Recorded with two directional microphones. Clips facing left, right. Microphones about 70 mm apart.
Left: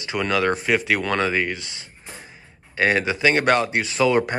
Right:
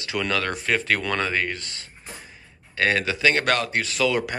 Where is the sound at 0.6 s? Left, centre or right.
Centre; by 4.4 s left.